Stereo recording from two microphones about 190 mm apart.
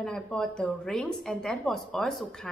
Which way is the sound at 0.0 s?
5° left (ahead or behind).